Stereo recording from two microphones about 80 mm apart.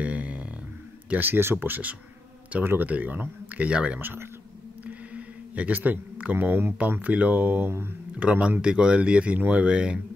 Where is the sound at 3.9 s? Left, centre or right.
Right.